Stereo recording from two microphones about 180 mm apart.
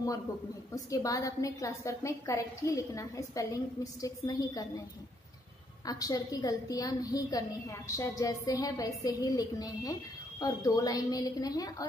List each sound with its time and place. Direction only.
0.8 s a woman's voice: 20° left (ahead or behind)
5.9 s a woman's voice: 20° left (ahead or behind)